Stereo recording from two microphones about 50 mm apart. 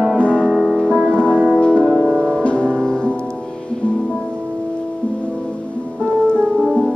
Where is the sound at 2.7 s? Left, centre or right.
Centre.